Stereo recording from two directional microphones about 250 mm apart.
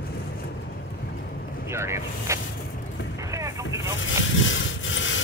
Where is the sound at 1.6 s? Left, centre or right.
Centre.